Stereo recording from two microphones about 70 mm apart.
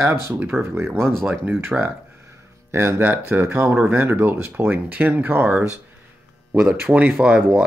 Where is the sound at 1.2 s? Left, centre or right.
Right.